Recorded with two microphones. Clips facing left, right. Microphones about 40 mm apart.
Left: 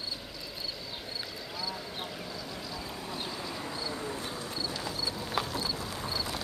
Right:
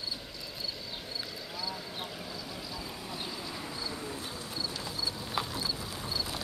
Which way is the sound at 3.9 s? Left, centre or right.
Centre.